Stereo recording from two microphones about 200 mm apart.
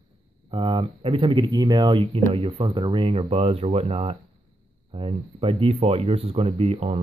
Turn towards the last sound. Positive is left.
turn(degrees=-30)  # may be behind; listen again after turning